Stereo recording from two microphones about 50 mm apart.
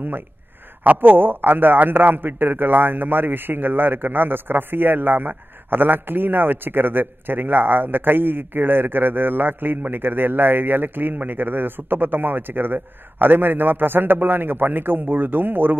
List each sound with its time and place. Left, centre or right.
0.8 s a man's voice: right